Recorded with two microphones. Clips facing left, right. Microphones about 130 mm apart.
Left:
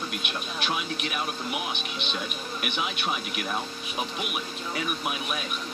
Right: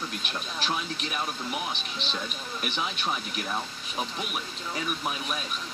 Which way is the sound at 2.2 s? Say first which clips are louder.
Left 1 dB; 10° left (ahead or behind).